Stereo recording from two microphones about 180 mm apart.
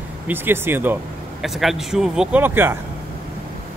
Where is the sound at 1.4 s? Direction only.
Centre (ahead or behind).